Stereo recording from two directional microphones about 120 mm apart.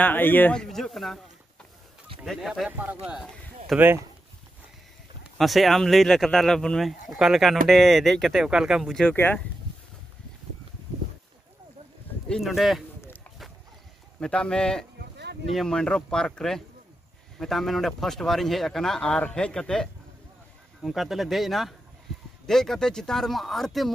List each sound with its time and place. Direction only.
0.0 s a man's voice: 15° left (ahead or behind); by 2.7 s centre (ahead or behind)
2.7 s speech: 15° right (ahead or behind)
5.4 s speech: centre (ahead or behind)
9.0 s speech: 15° left (ahead or behind)
12.3 s speech: centre (ahead or behind)
14.2 s speech: 5° left (ahead or behind)